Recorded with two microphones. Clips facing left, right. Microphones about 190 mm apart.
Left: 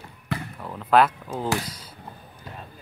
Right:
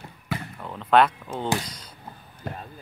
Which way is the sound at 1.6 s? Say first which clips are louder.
Left 2 dB; 5° left (ahead or behind).